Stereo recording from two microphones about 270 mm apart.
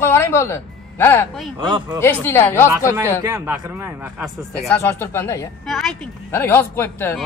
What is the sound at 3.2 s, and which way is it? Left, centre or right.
A man's voice, centre.